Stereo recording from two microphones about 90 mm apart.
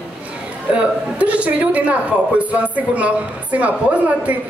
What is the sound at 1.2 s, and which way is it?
A woman's voice, 15° right (ahead or behind).